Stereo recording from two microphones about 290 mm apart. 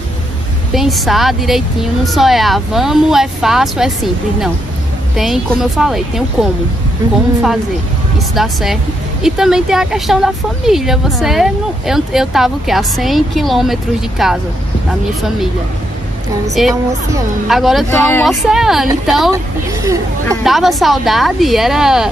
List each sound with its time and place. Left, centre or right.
0.7 s speech: centre
8.2 s speech: centre
16.5 s speech: centre